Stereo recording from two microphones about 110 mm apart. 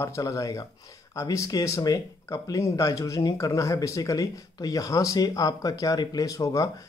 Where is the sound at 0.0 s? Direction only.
25° left (ahead or behind).